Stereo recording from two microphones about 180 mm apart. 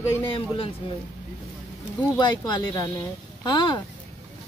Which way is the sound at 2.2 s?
25° left (ahead or behind).